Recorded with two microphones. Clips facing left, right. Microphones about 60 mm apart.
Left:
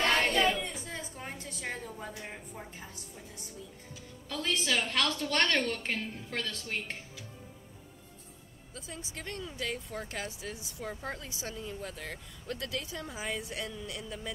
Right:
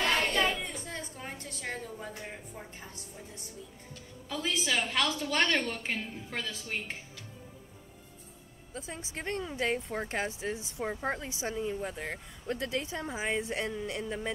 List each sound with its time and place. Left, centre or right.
0.2 s child singing: centre
0.7 s a woman's voice: centre
3.9 s a woman's voice: centre
8.7 s speech: right